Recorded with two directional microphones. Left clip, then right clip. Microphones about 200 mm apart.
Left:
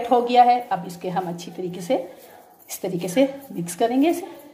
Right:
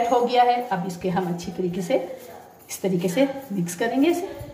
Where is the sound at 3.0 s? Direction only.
50° left (ahead or behind).